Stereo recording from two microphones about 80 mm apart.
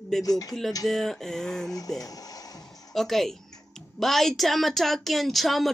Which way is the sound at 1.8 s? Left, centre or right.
Left.